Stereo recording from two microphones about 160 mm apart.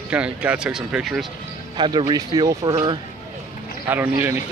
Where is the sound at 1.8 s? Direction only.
30° right (ahead or behind).